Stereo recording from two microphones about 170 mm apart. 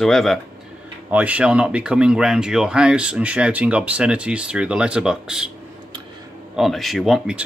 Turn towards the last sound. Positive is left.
turn(degrees=-5)  # may be behind; listen again after turning